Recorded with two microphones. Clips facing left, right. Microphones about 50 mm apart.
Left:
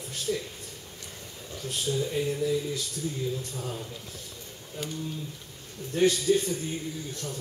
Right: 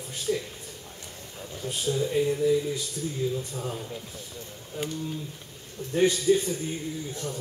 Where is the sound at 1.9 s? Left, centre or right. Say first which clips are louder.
Right 4 dB; centre.